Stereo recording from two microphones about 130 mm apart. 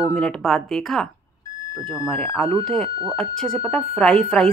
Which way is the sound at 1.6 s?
20° left (ahead or behind).